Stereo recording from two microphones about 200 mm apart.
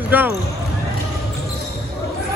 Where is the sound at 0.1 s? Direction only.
10° right (ahead or behind).